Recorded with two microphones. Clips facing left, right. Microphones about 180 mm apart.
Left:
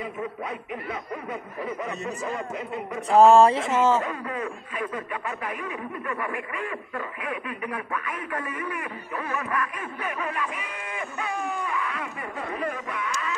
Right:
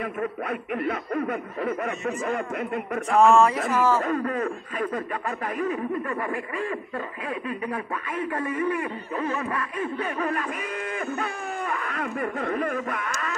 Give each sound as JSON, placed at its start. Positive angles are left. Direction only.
{"t": 0.0, "sound": "speech", "side_deg": -60}
{"t": 3.1, "sound": "speech", "side_deg": 35}
{"t": 4.0, "sound": "speech", "side_deg": -45}